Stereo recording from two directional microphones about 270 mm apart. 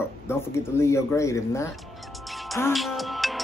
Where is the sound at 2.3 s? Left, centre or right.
Centre.